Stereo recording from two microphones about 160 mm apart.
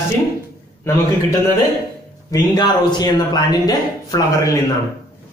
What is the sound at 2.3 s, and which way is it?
A man's voice, 25° left (ahead or behind).